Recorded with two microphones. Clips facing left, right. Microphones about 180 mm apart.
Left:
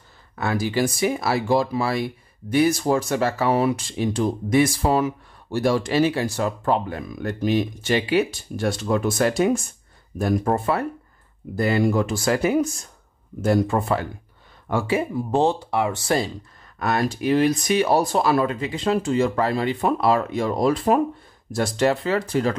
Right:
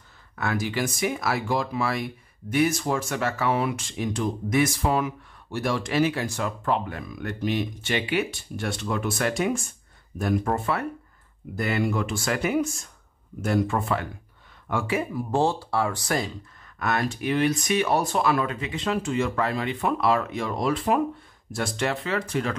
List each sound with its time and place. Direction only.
0.4 s speech: 30° left (ahead or behind)